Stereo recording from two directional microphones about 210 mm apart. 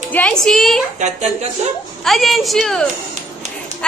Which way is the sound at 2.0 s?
Centre (ahead or behind).